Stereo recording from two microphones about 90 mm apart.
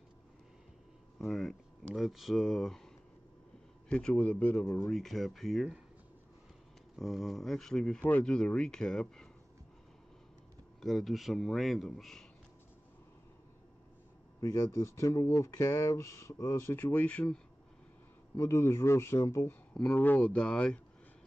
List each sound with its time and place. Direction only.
1.1 s a man's voice: centre (ahead or behind)
3.9 s speech: 10° left (ahead or behind)
4.9 s a man's voice: centre (ahead or behind)
7.0 s a man's voice: centre (ahead or behind)
8.0 s speech: 20° left (ahead or behind)
8.3 s speech: 10° left (ahead or behind)
10.8 s a man's voice: centre (ahead or behind)
14.4 s speech: 35° left (ahead or behind)
16.7 s speech: 20° left (ahead or behind)
18.3 s speech: 30° left (ahead or behind)
19.9 s speech: 20° left (ahead or behind)